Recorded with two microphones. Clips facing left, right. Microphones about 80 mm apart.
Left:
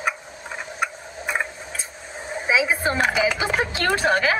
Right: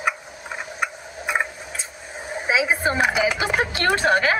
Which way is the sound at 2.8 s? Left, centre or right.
Centre.